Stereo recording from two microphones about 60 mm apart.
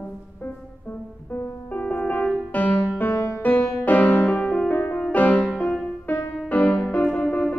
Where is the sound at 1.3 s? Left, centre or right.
Left.